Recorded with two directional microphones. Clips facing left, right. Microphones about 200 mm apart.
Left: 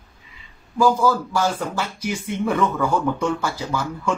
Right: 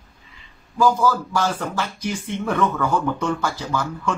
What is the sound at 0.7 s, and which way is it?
Speech, 10° left (ahead or behind).